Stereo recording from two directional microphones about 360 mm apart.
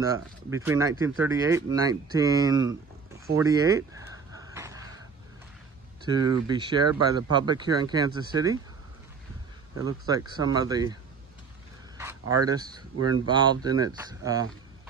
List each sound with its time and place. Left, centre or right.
0.0 s speech: centre
4.4 s a sound: centre
6.0 s speech: centre
9.8 s speech: centre
12.0 s speech: centre
13.0 s speech: right
13.3 s speech: centre